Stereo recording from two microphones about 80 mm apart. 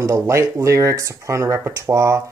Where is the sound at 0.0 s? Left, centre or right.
Right.